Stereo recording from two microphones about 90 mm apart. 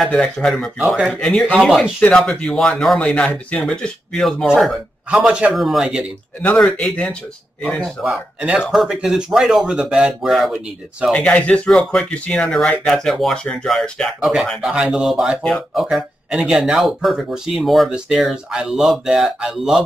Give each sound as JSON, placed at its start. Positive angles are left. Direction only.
{"t": 0.0, "sound": "speech", "side_deg": 10}
{"t": 0.7, "sound": "speech", "side_deg": -5}
{"t": 1.1, "sound": "a man's voice", "side_deg": 10}
{"t": 5.2, "sound": "speech", "side_deg": -15}
{"t": 5.5, "sound": "speech", "side_deg": 0}
{"t": 6.8, "sound": "speech", "side_deg": 15}
{"t": 8.0, "sound": "speech", "side_deg": -10}
{"t": 11.1, "sound": "speech", "side_deg": 15}